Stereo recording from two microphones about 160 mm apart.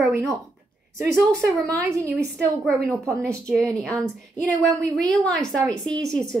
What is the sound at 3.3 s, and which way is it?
A woman's voice, 5° left (ahead or behind).